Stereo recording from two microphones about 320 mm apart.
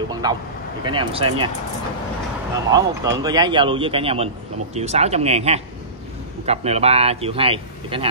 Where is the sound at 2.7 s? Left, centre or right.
Centre.